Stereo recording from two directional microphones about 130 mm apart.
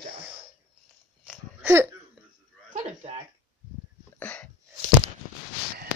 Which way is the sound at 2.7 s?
65° right (ahead or behind).